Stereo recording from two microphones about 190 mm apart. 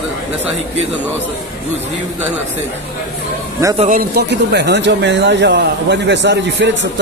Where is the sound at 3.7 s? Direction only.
45° right (ahead or behind).